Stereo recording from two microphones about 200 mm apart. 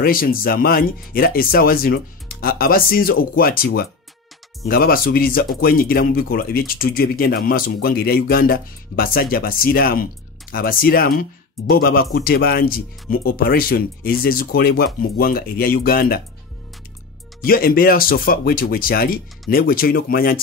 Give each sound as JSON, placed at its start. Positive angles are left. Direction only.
{"t": 0.0, "sound": "speech", "side_deg": 45}
{"t": 17.4, "sound": "speech", "side_deg": 45}